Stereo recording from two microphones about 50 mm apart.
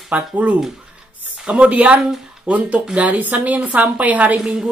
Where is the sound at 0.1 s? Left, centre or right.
Right.